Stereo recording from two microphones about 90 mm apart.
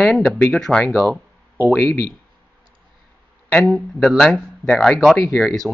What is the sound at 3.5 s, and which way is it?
Speech, 15° left (ahead or behind).